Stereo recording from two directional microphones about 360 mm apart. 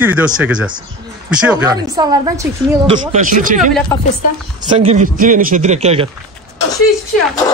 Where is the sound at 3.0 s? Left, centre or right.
Right.